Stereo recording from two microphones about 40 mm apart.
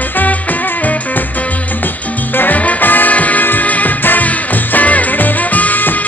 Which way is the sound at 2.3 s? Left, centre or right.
Left.